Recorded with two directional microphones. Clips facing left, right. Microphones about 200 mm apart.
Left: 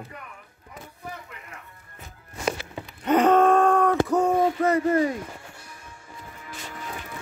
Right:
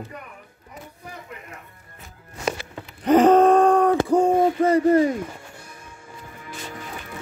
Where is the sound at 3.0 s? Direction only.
35° right (ahead or behind).